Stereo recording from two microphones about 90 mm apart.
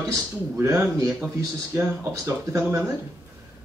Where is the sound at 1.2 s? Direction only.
20° right (ahead or behind).